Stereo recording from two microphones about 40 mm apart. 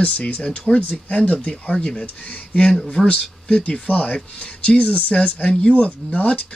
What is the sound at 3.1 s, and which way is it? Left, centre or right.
Speech, left.